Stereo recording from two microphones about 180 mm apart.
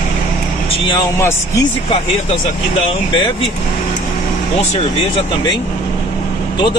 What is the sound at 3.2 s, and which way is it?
Speech, 30° left (ahead or behind).